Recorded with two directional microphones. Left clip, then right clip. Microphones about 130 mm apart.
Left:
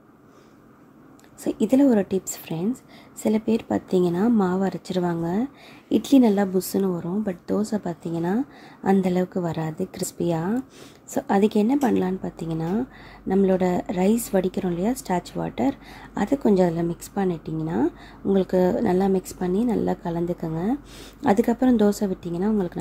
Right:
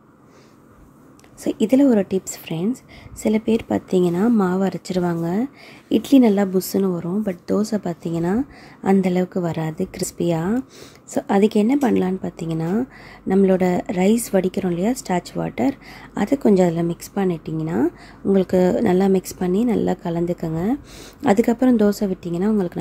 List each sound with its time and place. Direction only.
1.4 s speech: 15° right (ahead or behind)